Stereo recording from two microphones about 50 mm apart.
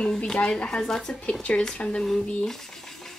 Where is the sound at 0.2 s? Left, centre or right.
Centre.